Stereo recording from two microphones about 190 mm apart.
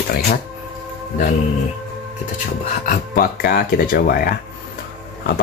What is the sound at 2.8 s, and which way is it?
Speech, 50° left (ahead or behind).